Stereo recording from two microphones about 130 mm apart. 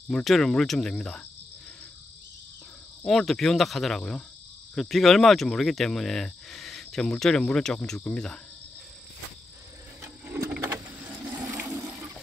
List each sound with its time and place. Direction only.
0.1 s speech: centre (ahead or behind)
3.0 s speech: 5° left (ahead or behind)
10.0 s a sound: 20° right (ahead or behind)
11.6 s toilet flush: 20° right (ahead or behind)